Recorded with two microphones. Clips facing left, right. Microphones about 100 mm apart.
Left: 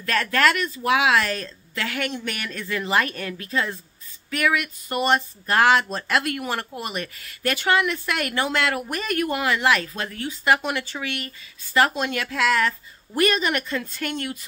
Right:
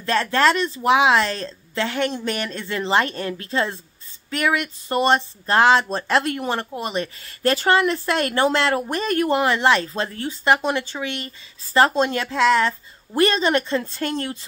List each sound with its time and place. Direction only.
0.0 s speech: 25° right (ahead or behind)